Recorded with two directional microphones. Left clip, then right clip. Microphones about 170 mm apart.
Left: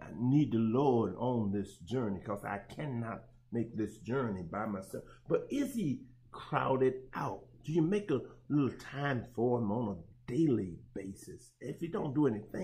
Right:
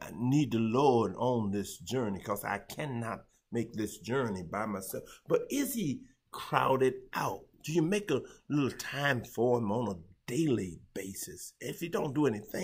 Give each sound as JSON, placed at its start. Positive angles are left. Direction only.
{"t": 0.0, "sound": "speech", "side_deg": -15}